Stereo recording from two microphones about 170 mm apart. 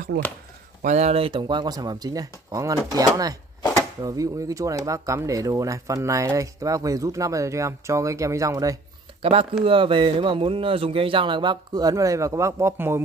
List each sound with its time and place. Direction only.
0.1 s speech: 70° right (ahead or behind)
0.8 s speech: 40° right (ahead or behind); by 8.7 s 20° right (ahead or behind)
9.2 s speech: 35° right (ahead or behind); by 13.0 s 15° right (ahead or behind)